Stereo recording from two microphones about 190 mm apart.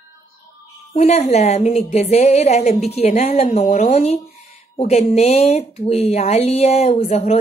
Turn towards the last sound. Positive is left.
turn(degrees=35)  # may be behind; listen again after turning